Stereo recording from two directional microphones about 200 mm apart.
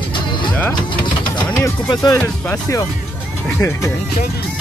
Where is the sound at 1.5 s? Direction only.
15° left (ahead or behind).